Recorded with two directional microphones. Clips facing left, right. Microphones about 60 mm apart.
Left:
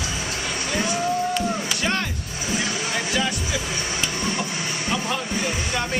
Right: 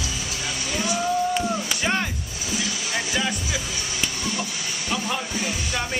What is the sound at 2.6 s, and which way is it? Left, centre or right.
Music, left.